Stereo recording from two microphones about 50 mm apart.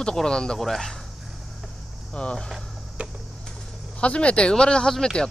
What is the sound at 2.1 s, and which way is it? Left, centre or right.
Speech, centre.